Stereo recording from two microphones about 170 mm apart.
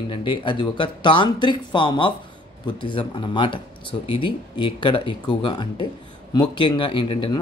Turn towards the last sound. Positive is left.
turn(degrees=30)  # may be behind; listen again after turning